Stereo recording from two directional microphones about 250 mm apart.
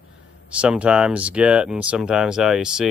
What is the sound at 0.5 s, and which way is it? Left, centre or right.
Speech, centre.